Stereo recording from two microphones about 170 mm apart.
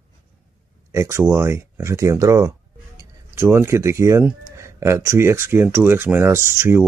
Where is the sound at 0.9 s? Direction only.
15° right (ahead or behind).